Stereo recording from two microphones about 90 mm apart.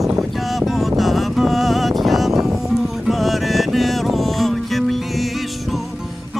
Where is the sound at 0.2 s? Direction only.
Centre (ahead or behind).